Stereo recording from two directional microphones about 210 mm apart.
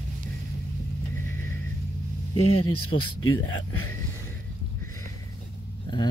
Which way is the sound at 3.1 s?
75° left (ahead or behind).